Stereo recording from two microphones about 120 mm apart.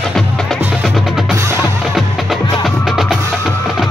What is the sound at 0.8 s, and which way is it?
Percussion, 5° right (ahead or behind).